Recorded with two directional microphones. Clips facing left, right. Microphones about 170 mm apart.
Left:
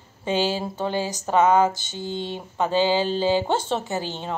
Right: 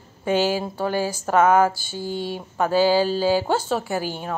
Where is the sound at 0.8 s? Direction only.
20° left (ahead or behind).